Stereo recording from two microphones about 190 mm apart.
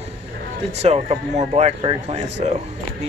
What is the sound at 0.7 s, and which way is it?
Speech, 35° right (ahead or behind).